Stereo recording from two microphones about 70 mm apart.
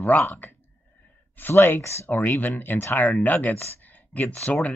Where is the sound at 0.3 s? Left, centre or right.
Left.